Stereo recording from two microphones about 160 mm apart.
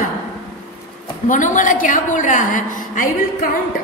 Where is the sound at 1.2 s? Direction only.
55° left (ahead or behind).